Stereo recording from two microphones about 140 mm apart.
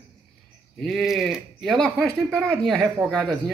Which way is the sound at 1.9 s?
20° right (ahead or behind).